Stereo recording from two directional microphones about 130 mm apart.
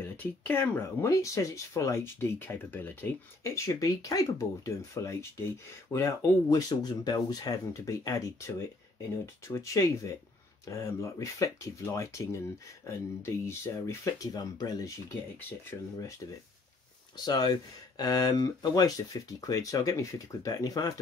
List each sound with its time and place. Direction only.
0.0 s speech: 15° left (ahead or behind)
17.2 s speech: 30° left (ahead or behind)